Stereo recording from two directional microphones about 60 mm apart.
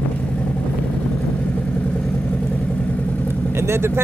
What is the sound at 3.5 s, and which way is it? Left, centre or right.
Vehicle, right.